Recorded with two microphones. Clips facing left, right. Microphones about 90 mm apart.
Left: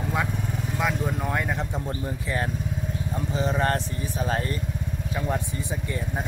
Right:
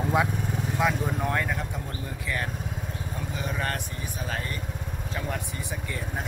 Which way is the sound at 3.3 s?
30° left (ahead or behind).